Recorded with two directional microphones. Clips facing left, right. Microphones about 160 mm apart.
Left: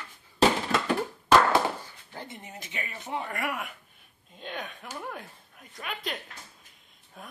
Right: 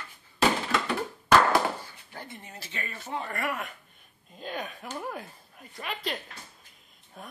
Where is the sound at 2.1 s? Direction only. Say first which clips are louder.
Left 2 dB; 20° left (ahead or behind).